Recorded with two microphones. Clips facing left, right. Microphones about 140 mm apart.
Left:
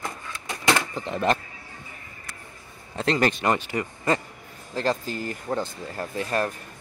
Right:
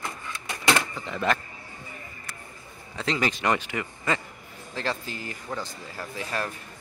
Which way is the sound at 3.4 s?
35° left (ahead or behind).